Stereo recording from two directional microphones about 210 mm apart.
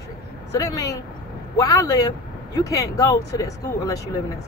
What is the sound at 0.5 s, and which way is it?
Speech, 15° left (ahead or behind).